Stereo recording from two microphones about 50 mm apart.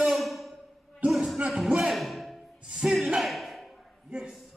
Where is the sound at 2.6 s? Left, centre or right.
Centre.